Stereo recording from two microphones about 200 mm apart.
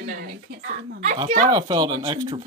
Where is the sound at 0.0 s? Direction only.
45° right (ahead or behind).